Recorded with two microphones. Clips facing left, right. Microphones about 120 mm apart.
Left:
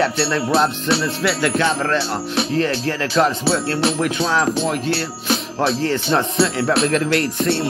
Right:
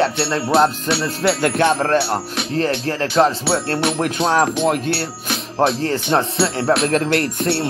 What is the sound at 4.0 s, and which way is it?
Music, 50° right (ahead or behind).